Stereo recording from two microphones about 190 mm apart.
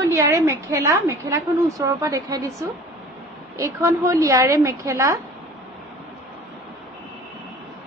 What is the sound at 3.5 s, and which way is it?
A woman's voice, 15° right (ahead or behind).